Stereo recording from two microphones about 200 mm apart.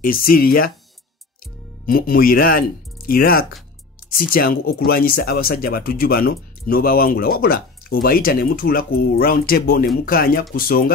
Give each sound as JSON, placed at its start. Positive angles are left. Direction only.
{"t": 0.0, "sound": "speech", "side_deg": 45}
{"t": 1.9, "sound": "speech", "side_deg": 45}